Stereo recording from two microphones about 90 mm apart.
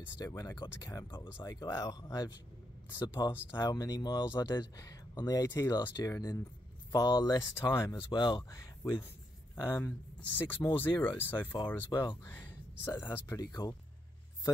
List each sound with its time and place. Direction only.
0.2 s speech: 40° left (ahead or behind)
6.9 s speech: 50° left (ahead or behind)
7.4 s speech: 30° left (ahead or behind)
8.1 s speech: 55° left (ahead or behind)
8.4 s speech: 30° left (ahead or behind)
11.9 s speech: 55° left (ahead or behind)
12.3 s a sound: 20° left (ahead or behind)
13.3 s speech: 45° left (ahead or behind)